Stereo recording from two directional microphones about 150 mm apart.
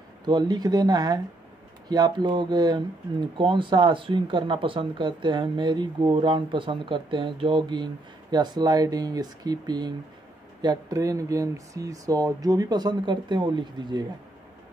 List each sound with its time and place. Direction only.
0.2 s speech: 30° right (ahead or behind)